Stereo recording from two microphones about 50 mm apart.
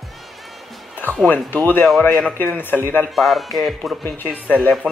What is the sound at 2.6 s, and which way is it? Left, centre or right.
Speech, left.